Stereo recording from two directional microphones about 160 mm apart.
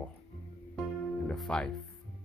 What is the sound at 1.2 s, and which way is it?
Speech, 5° left (ahead or behind).